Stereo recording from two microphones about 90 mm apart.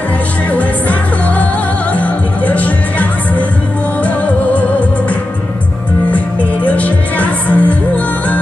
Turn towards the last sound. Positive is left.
turn(degrees=15)  # may be behind; listen again after turning